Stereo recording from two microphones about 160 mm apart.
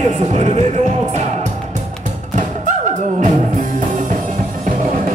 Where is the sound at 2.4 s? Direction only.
50° right (ahead or behind).